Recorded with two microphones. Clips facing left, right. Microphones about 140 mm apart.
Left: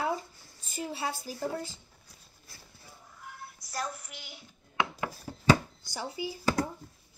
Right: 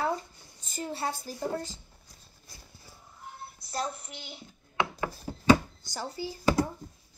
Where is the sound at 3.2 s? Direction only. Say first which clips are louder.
Right 2 dB; 25° right (ahead or behind).